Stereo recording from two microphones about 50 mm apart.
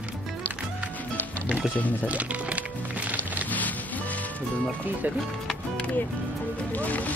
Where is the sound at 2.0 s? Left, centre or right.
Right.